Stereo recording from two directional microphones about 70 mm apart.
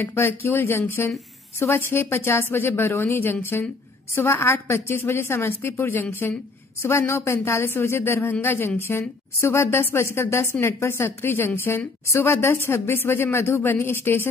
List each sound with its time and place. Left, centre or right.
0.0 s speech: left